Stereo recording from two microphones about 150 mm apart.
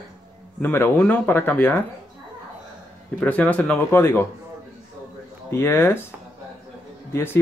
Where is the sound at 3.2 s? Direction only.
10° left (ahead or behind).